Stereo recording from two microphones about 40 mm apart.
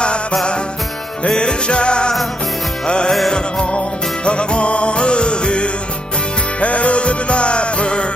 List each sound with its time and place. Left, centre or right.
1.2 s music: left
3.1 s music: centre